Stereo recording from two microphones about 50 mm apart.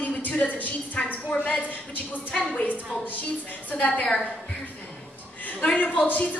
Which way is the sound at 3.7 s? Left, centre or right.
Left.